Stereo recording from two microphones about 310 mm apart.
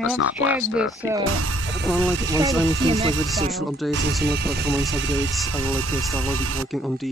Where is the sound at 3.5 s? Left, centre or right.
Centre.